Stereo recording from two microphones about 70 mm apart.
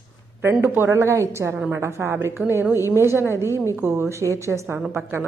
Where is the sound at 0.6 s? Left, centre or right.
Right.